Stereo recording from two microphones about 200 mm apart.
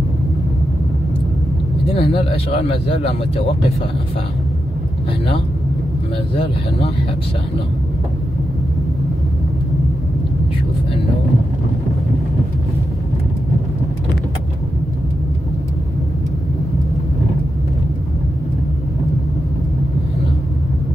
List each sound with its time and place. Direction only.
1.9 s a man's voice: 30° left (ahead or behind)